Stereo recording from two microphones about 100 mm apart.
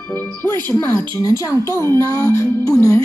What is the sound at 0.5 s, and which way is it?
Speech, 25° left (ahead or behind).